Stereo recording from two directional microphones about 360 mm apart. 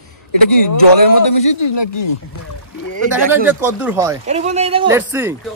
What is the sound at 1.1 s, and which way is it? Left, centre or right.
Speech, left.